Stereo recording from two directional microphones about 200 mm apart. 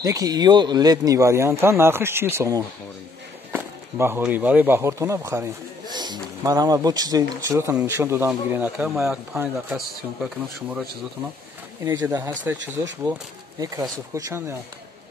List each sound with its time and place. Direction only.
0.0 s speech: 15° right (ahead or behind); by 10.9 s centre (ahead or behind)
11.8 s speech: 15° right (ahead or behind)
13.6 s speech: 15° right (ahead or behind)